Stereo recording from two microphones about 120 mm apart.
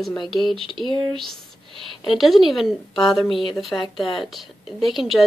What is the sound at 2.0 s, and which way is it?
Speech, centre (ahead or behind).